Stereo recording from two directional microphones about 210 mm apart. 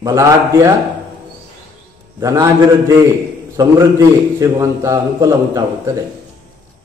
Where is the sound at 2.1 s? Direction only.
15° right (ahead or behind).